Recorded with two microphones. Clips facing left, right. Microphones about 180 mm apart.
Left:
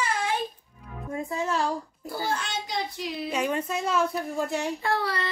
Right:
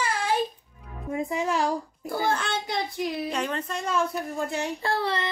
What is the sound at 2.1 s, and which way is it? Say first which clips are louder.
A child's voice: right 4 dB; 55° right (ahead or behind).